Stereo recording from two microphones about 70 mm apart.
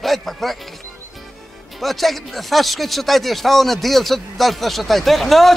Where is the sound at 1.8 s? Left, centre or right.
Centre.